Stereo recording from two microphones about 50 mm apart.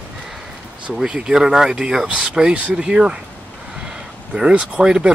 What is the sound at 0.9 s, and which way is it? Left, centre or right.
Speech, centre.